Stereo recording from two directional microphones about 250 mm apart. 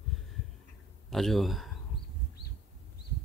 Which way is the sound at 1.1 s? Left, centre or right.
Centre.